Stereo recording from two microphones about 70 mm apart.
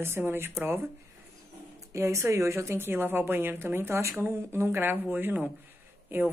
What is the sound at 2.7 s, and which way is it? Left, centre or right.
Speech, right.